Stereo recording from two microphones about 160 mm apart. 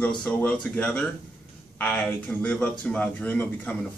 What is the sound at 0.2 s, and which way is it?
Speech, 10° left (ahead or behind).